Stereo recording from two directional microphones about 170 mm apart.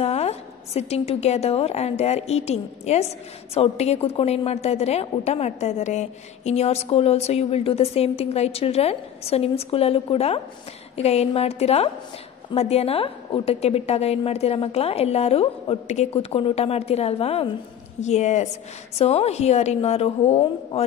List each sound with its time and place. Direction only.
0.0 s a woman's voice: 40° left (ahead or behind)